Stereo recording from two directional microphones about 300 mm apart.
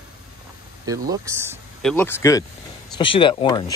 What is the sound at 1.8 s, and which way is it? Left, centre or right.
Speech, centre.